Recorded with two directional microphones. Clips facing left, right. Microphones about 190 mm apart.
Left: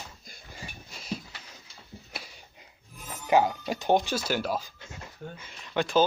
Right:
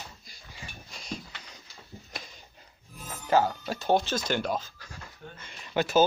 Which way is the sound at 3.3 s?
15° left (ahead or behind).